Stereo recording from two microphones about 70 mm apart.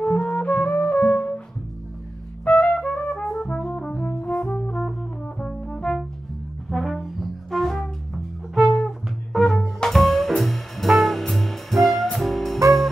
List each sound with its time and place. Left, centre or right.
0.0 s music: centre
2.4 s brass instrument: centre